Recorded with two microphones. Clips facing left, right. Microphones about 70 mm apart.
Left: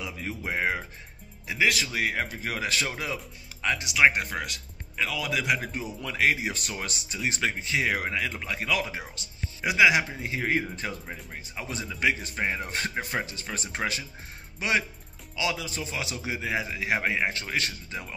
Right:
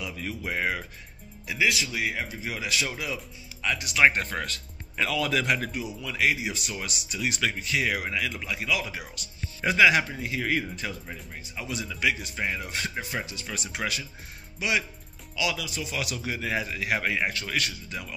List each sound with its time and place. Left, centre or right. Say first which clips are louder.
0.0 s a man's voice: even; left
1.5 s speech: left 1 dB; left
3.9 s speech: right 1 dB; centre
4.9 s speech: right 3 dB; centre
5.9 s speech: left 1 dB; left
8.9 s a man's voice: left 1 dB; left
9.6 s speech: right 1 dB; centre
10.2 s a man's voice: even; left